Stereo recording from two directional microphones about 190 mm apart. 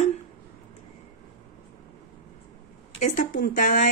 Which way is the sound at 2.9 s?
45° left (ahead or behind).